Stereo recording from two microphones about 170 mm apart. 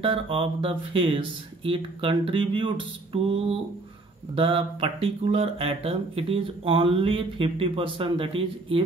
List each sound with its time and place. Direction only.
0.0 s speech: 30° right (ahead or behind)